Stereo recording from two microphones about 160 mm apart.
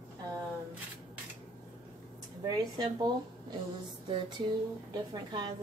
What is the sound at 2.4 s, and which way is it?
Speech, 25° right (ahead or behind).